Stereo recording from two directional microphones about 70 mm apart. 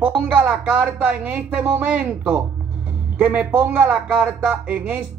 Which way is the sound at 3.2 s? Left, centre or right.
Centre.